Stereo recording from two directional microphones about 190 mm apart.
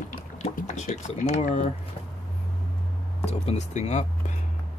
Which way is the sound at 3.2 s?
35° left (ahead or behind).